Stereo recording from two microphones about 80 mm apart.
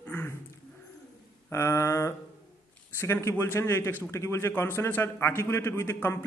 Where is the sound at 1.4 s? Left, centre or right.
Left.